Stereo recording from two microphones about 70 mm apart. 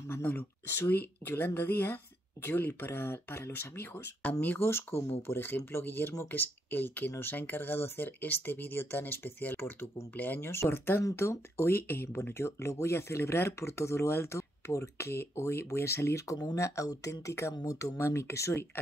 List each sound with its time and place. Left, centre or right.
0.1 s speech: left
10.5 s speech: left
16.3 s speech: left
17.9 s speech: left